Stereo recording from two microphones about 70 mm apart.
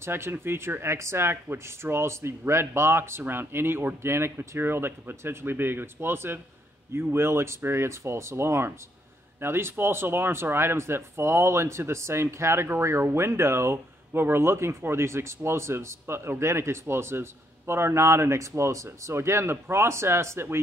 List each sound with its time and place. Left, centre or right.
0.0 s speech: right